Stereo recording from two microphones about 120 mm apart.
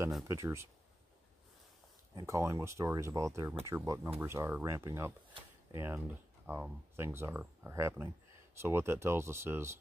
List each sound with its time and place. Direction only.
0.3 s speech: 25° right (ahead or behind)
2.1 s speech: 25° right (ahead or behind)
6.4 s speech: 15° right (ahead or behind)